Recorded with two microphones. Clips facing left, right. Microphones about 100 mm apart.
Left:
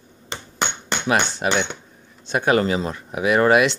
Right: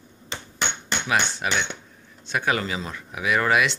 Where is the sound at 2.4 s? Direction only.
40° left (ahead or behind).